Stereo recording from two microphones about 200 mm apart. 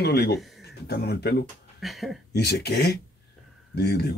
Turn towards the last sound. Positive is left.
turn(degrees=55)  # may be behind; listen again after turning